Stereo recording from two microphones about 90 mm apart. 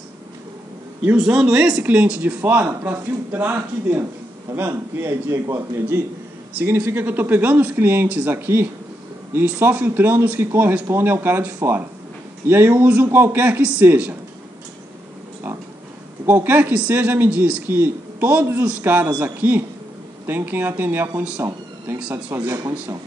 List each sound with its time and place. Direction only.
1.0 s a man's voice: 10° right (ahead or behind)
16.3 s a man's voice: 20° right (ahead or behind)
22.1 s a man's voice: 30° right (ahead or behind)